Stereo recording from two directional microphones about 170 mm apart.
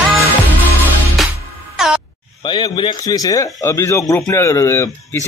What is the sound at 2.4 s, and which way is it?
Speech, 25° left (ahead or behind).